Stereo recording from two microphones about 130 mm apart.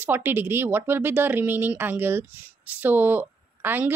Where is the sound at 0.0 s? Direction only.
15° right (ahead or behind).